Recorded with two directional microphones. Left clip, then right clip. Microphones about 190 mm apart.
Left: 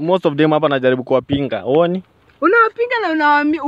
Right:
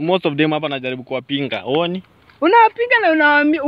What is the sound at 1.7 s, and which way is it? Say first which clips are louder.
Speech: left 5 dB; 60° left (ahead or behind).